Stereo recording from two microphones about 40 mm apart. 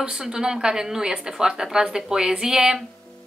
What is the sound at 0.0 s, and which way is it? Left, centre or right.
Speech, centre.